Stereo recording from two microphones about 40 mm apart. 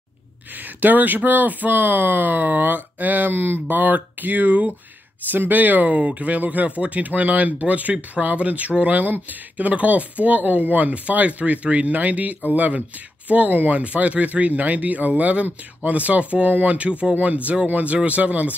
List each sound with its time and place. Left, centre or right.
0.6 s speech: right
3.6 s speech: right
5.9 s speech: right
16.4 s speech: right
16.7 s speech: right